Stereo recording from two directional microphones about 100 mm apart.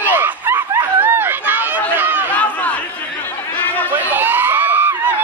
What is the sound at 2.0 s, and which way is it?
Chatter, 20° right (ahead or behind).